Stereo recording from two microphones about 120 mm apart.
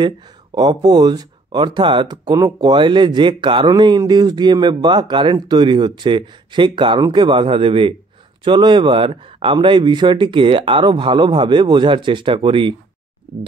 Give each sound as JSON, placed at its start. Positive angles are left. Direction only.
{"t": 0.6, "sound": "speech", "side_deg": -35}